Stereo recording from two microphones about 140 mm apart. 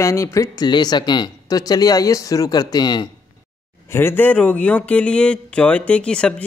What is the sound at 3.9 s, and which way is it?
Speech, 15° left (ahead or behind).